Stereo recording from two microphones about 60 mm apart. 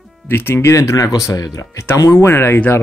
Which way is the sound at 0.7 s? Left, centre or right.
Left.